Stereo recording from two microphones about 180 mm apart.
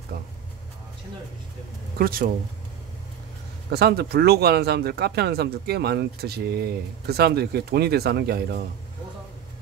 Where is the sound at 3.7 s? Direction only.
60° right (ahead or behind).